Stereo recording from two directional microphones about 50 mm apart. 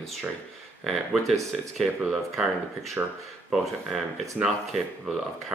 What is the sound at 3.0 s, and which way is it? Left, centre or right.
Speech, right.